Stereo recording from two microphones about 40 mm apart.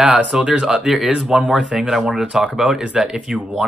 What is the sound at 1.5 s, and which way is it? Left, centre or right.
Speech, right.